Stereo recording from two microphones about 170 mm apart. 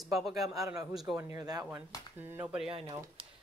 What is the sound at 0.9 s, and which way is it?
Speech, centre (ahead or behind).